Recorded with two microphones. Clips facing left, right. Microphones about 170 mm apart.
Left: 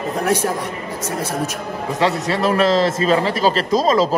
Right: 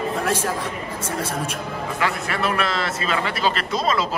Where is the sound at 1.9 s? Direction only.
30° left (ahead or behind).